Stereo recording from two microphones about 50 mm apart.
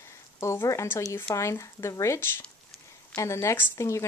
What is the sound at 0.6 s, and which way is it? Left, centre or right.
Speech, left.